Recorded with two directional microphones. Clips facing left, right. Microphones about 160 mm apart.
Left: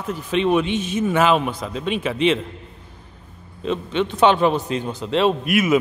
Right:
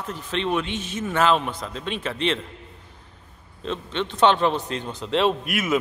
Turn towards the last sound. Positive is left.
turn(degrees=5)  # may be behind; listen again after turning